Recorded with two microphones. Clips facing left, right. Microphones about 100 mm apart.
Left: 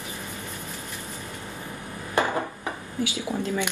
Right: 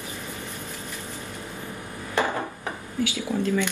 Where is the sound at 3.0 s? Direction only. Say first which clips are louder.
Right 2 dB; 20° left (ahead or behind).